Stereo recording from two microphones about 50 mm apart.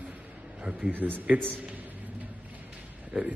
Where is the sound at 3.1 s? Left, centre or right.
Centre.